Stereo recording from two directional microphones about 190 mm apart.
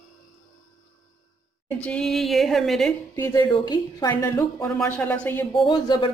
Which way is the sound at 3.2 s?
20° left (ahead or behind).